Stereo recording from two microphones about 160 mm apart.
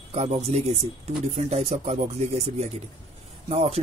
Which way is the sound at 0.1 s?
40° right (ahead or behind).